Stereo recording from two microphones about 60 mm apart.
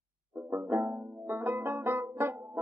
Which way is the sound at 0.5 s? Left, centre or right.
Right.